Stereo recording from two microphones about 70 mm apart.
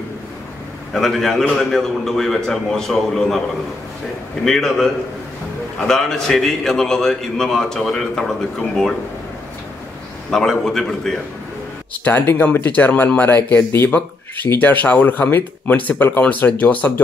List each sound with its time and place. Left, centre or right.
0.9 s a man's voice: centre
4.5 s a man's voice: centre
10.3 s a man's voice: centre
12.0 s speech: left